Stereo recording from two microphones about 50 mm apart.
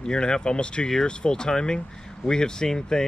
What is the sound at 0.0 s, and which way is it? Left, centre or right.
Speech, centre.